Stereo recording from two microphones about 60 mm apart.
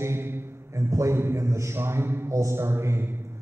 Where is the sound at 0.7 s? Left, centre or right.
Right.